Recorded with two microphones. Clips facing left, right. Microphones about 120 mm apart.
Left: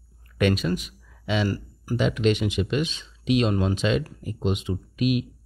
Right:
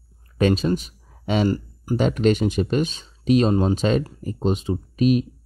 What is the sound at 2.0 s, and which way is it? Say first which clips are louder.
Speech: right 3 dB; 40° right (ahead or behind).